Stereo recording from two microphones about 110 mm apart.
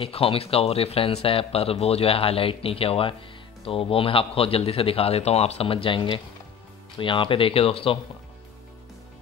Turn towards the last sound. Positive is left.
turn(degrees=55)  # may be behind; listen again after turning